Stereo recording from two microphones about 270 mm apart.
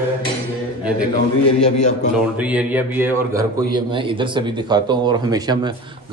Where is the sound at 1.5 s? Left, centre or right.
Left.